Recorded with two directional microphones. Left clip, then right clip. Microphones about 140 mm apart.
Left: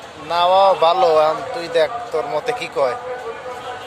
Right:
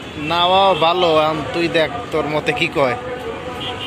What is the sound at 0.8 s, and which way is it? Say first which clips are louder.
A man's voice: left 1 dB; 25° left (ahead or behind).